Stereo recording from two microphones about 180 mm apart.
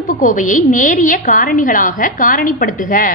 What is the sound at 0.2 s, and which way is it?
A woman's voice, 45° left (ahead or behind).